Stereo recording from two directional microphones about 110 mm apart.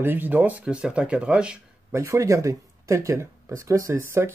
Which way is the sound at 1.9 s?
30° right (ahead or behind).